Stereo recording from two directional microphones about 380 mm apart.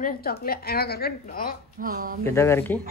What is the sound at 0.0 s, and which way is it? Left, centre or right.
A woman's voice, left.